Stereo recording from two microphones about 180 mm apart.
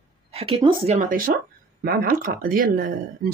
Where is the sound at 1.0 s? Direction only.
50° right (ahead or behind).